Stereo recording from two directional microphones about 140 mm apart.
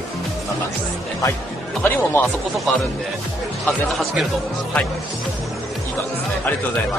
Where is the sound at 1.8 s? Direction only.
15° left (ahead or behind).